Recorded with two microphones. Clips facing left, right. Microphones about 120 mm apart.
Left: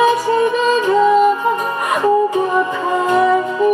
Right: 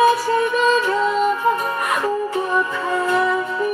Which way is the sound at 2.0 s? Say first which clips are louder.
Left 7 dB; 15° left (ahead or behind).